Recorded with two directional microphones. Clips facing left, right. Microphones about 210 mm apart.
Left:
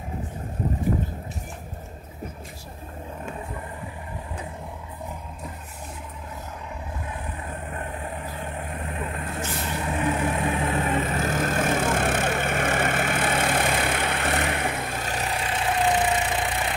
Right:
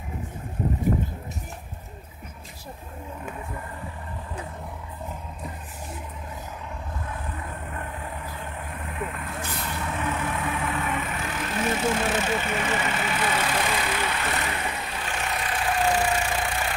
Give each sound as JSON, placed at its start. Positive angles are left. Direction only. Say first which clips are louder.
{"t": 8.7, "sound": "vehicle", "louder": "right 2 dB", "side_deg": 30}
{"t": 9.6, "sound": "vehicle", "louder": "left 3 dB", "side_deg": 15}
{"t": 10.0, "sound": "vehicle", "louder": "left 5 dB", "side_deg": 30}
{"t": 10.9, "sound": "vehicle", "louder": "left 5 dB", "side_deg": 40}